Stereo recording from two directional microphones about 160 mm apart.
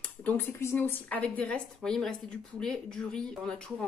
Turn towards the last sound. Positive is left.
turn(degrees=5)  # may be behind; listen again after turning